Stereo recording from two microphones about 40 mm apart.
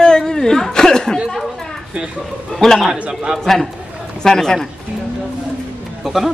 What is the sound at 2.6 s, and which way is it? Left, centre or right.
Speech, centre.